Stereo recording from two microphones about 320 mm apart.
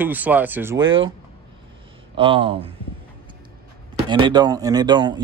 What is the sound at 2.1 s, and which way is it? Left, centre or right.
Speech, centre.